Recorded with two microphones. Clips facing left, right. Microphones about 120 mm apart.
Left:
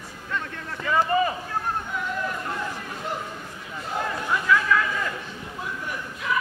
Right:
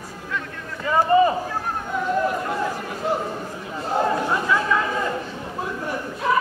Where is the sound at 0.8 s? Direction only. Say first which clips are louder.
Right 5 dB; 30° right (ahead or behind).